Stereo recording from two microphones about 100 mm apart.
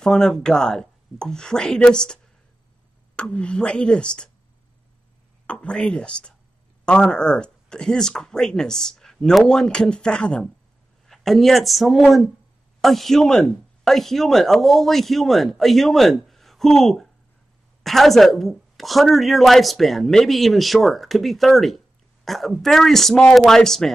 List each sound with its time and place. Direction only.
0.0 s speech: 5° left (ahead or behind)
3.2 s speech: 10° left (ahead or behind)
5.5 s a woman's voice: 10° left (ahead or behind)